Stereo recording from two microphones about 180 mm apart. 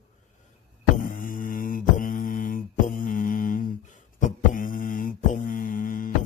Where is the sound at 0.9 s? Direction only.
50° left (ahead or behind).